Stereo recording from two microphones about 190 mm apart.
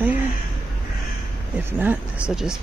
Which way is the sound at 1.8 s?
5° right (ahead or behind).